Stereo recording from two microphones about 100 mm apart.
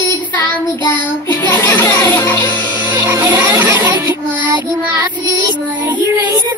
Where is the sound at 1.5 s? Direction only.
20° left (ahead or behind).